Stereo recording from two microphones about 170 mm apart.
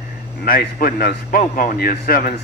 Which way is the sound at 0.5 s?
60° left (ahead or behind).